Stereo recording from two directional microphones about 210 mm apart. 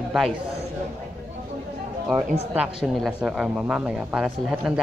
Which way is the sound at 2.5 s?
Centre (ahead or behind).